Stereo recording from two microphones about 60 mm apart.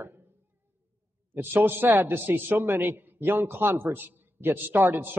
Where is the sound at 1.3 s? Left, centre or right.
Right.